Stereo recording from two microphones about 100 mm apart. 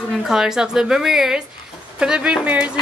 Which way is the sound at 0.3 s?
5° right (ahead or behind).